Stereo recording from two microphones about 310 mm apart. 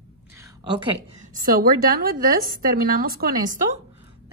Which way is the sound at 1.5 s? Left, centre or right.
Right.